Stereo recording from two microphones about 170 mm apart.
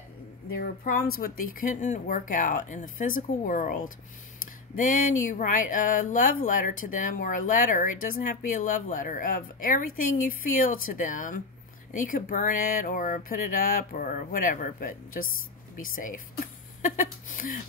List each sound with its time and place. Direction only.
0.6 s speech: 60° left (ahead or behind)
4.7 s speech: 50° left (ahead or behind)